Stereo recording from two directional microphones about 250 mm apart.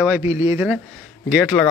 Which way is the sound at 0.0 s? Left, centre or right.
Centre.